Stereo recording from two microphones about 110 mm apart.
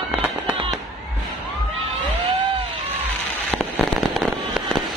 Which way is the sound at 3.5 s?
10° left (ahead or behind).